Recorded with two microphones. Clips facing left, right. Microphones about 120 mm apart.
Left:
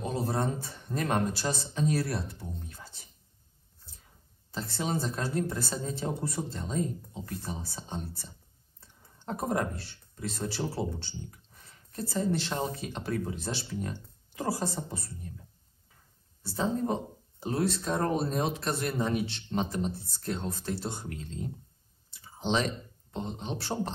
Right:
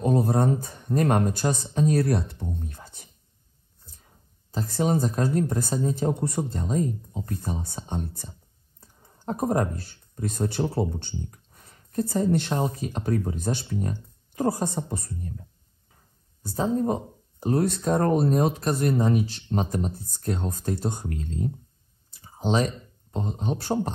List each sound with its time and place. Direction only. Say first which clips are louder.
0.0 s speech: right 8 dB; 50° right (ahead or behind)
4.6 s speech: right 8 dB; 45° right (ahead or behind)
6.1 s speech: right 6 dB; 60° right (ahead or behind)
6.7 s speech: right 5 dB; 35° right (ahead or behind)
7.4 s speech: right 6 dB; 55° right (ahead or behind)
9.0 s a sound: right 6 dB; 35° right (ahead or behind)
9.8 s speech: right 6 dB; 50° right (ahead or behind)
12.4 s speech: right 6 dB; 25° right (ahead or behind)
12.8 s speech: right 6 dB; 40° right (ahead or behind)
16.4 s speech: right 5 dB; 45° right (ahead or behind)
18.9 s speech: right 6 dB; 35° right (ahead or behind)
23.1 s speech: right 6 dB; 40° right (ahead or behind)